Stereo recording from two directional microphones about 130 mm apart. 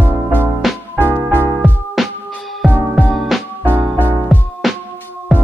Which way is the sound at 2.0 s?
Centre (ahead or behind).